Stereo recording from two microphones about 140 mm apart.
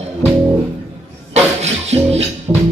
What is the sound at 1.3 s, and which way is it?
Music, 50° right (ahead or behind).